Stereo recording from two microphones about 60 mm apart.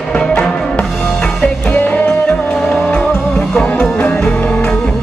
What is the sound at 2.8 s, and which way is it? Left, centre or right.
Music, left.